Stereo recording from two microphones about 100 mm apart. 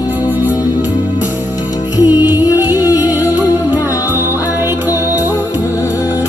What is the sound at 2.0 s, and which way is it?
Music, 15° right (ahead or behind).